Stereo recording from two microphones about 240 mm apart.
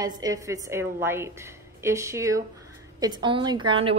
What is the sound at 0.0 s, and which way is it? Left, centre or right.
A woman's voice, centre.